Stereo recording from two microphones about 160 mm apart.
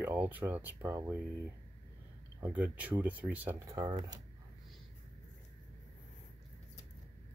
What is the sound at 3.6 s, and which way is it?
Speech, 25° right (ahead or behind).